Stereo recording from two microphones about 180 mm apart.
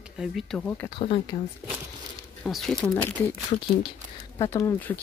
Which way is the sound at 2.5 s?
Centre (ahead or behind).